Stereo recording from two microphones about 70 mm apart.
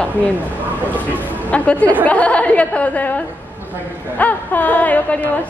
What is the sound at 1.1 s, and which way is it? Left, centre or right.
A woman's voice, left.